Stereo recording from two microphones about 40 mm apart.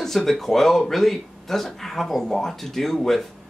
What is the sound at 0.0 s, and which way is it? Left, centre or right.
Speech, centre.